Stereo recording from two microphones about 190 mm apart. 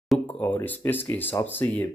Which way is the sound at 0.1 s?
10° left (ahead or behind).